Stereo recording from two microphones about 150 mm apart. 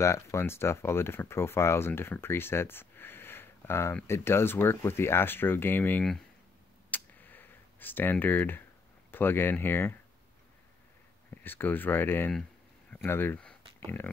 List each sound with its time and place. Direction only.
0.0 s speech: 20° left (ahead or behind)
6.9 s a sound: 10° left (ahead or behind)
9.1 s speech: 15° left (ahead or behind)
11.2 s speech: 15° left (ahead or behind)